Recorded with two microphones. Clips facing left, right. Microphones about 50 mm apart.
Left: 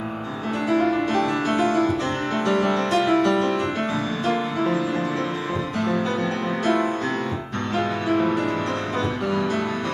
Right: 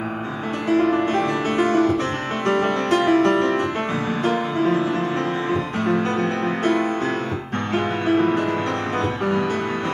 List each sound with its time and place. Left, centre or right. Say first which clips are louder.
0.7 s music: right 3 dB; right
6.6 s music: even; right